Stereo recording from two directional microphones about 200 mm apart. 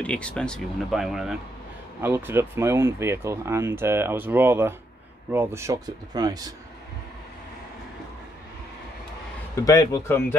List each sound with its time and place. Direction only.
0.0 s speech: 5° left (ahead or behind); by 6.5 s 20° right (ahead or behind)
9.6 s speech: 15° left (ahead or behind)